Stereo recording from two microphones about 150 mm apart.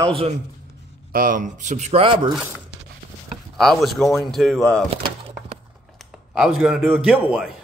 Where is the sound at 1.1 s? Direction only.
65° right (ahead or behind); by 2.1 s 40° right (ahead or behind).